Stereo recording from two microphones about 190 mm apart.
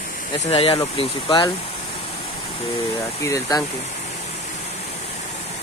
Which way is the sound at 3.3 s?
20° left (ahead or behind).